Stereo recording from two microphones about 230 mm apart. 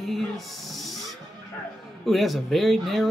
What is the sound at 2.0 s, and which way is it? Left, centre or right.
Music, centre.